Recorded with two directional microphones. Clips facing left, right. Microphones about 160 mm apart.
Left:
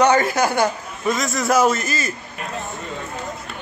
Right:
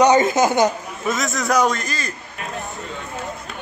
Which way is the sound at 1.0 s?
Centre (ahead or behind).